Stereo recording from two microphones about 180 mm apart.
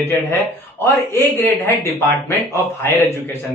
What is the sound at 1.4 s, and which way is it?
A man's voice, 10° left (ahead or behind).